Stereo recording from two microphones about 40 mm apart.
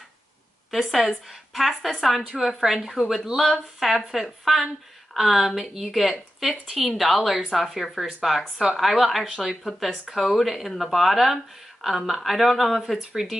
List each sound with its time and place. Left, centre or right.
0.7 s speech: centre